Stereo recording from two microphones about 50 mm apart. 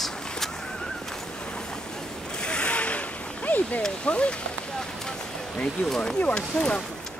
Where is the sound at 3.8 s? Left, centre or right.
Left.